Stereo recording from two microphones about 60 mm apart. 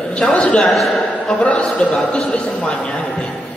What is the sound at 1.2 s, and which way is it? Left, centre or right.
A man's voice, centre.